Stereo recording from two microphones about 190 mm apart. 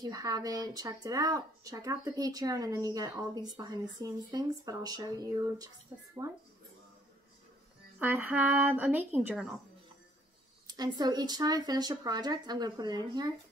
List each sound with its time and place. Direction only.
0.0 s speech: 20° right (ahead or behind)
8.0 s a woman's voice: 10° right (ahead or behind)
10.7 s speech: 20° right (ahead or behind)